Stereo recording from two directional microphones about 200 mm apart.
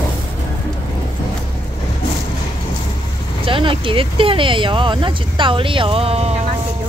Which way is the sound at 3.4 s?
25° right (ahead or behind).